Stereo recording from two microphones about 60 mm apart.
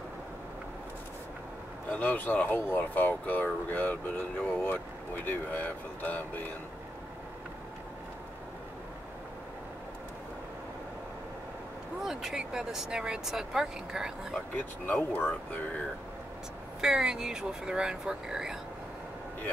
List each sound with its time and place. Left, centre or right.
1.9 s speech: left
12.0 s speech: centre
14.9 s speech: left
16.8 s speech: centre